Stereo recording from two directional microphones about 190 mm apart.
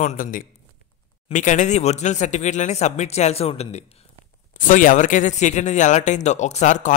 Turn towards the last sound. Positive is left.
turn(degrees=40)  # may be behind; listen again after turning